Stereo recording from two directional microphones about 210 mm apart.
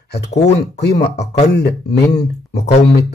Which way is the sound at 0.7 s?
55° left (ahead or behind).